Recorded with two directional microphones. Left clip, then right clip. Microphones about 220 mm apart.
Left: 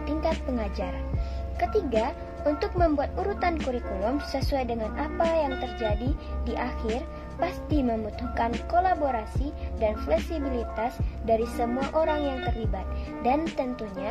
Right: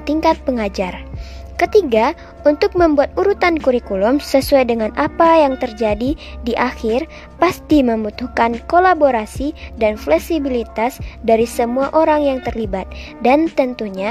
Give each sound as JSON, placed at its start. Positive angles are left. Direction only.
{"t": 0.0, "sound": "speech", "side_deg": -45}